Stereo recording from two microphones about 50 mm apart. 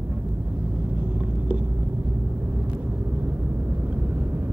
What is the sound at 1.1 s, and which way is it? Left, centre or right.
Vehicle, right.